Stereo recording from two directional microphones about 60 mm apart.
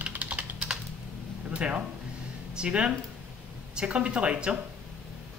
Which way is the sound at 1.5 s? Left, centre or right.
Right.